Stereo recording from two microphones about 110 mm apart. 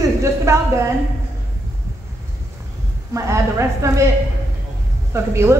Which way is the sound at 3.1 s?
25° right (ahead or behind).